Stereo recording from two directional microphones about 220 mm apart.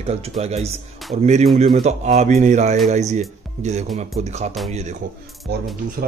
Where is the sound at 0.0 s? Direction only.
30° right (ahead or behind).